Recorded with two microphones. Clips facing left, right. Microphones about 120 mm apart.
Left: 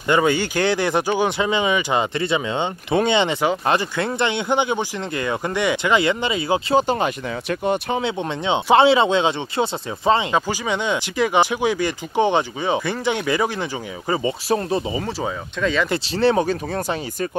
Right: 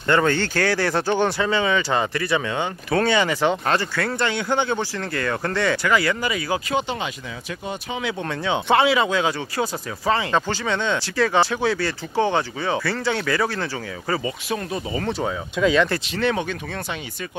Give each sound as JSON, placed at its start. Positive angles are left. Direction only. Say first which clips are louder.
{"t": 0.0, "sound": "speech", "louder": "left 1 dB", "side_deg": 10}
{"t": 6.8, "sound": "speech", "louder": "left 7 dB", "side_deg": 40}
{"t": 7.4, "sound": "speech", "louder": "left 9 dB", "side_deg": 60}
{"t": 8.0, "sound": "speech", "louder": "left 2 dB", "side_deg": 20}
{"t": 10.3, "sound": "speech", "louder": "left 1 dB", "side_deg": 10}
{"t": 15.0, "sound": "speech", "louder": "right 1 dB", "side_deg": 0}
{"t": 16.1, "sound": "speech", "louder": "left 5 dB", "side_deg": 30}